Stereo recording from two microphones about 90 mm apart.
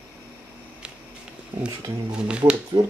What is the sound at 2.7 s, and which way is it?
Speech, 50° right (ahead or behind).